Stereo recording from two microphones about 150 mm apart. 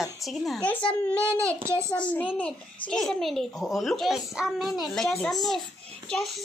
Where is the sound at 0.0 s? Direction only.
Centre (ahead or behind).